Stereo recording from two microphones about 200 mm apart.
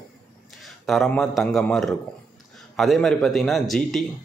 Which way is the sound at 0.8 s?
Centre (ahead or behind).